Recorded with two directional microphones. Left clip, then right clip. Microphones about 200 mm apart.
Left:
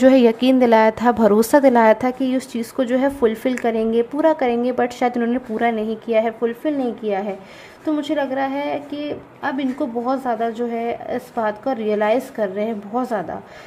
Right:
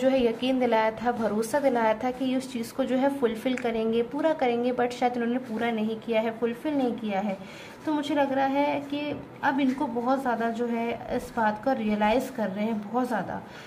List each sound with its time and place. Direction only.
0.0 s a woman's voice: 50° left (ahead or behind)